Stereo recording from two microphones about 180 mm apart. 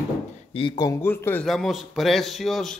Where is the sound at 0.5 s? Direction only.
25° left (ahead or behind).